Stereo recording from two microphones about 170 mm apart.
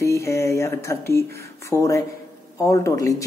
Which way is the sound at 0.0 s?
15° left (ahead or behind).